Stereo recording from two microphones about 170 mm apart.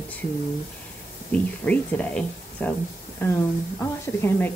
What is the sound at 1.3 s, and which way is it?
A woman's voice, 10° left (ahead or behind).